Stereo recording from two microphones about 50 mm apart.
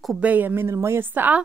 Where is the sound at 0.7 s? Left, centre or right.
Right.